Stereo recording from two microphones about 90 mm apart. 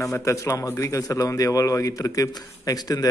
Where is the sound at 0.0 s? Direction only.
35° left (ahead or behind).